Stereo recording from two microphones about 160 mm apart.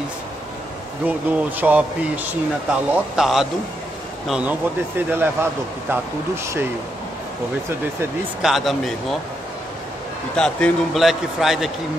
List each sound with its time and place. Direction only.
1.0 s speech: 10° right (ahead or behind)
2.9 s a man's voice: 5° right (ahead or behind)
8.4 s a man's voice: centre (ahead or behind)
10.3 s a man's voice: 5° left (ahead or behind)